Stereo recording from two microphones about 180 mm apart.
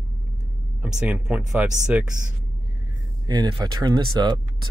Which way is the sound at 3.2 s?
20° right (ahead or behind).